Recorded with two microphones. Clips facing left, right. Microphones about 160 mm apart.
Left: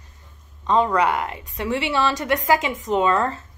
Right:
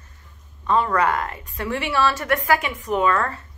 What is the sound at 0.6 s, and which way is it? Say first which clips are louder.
A woman's voice: left 1 dB; 20° left (ahead or behind).